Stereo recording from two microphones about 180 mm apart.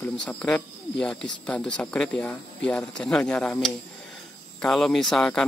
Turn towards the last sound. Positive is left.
turn(degrees=5)  # may be behind; listen again after turning